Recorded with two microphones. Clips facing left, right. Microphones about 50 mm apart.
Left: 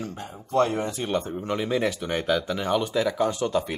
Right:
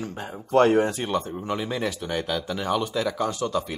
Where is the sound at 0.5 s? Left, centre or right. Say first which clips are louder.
Right 5 dB; right.